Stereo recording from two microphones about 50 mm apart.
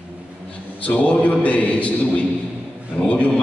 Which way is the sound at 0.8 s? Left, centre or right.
Left.